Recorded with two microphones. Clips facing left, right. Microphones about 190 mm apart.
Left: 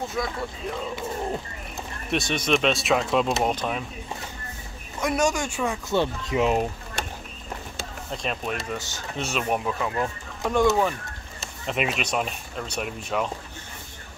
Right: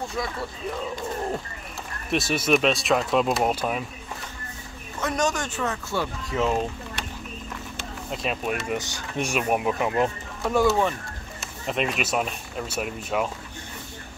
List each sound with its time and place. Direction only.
0.2 s speech: centre (ahead or behind)
2.0 s speech: 5° right (ahead or behind)
5.0 s speech: 10° left (ahead or behind)
8.1 s speech: 5° right (ahead or behind); by 10.1 s 20° right (ahead or behind)
10.4 s speech: 5° right (ahead or behind)